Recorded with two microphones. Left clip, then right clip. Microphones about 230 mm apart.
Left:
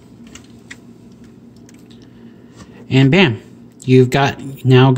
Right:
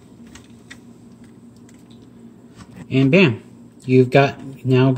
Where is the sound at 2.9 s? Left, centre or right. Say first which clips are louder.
Left 2 dB; left.